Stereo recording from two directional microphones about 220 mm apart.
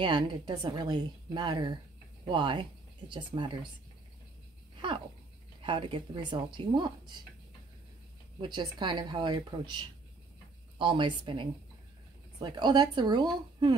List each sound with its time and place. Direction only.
0.0 s a woman's voice: 20° right (ahead or behind)
5.6 s a woman's voice: 20° right (ahead or behind)
8.4 s a woman's voice: 20° right (ahead or behind)